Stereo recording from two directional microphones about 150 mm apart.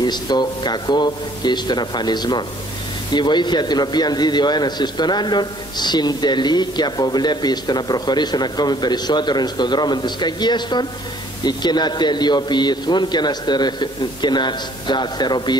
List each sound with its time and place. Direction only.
0.0 s a man's voice: 30° left (ahead or behind)